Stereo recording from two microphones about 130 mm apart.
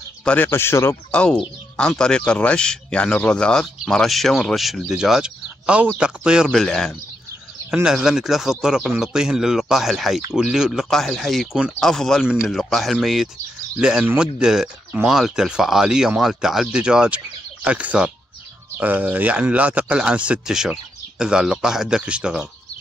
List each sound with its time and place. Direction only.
0.2 s speech: 10° left (ahead or behind)
1.2 s speech: 5° left (ahead or behind)